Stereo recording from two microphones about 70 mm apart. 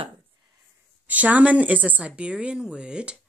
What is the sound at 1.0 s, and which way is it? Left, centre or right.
Speech, right.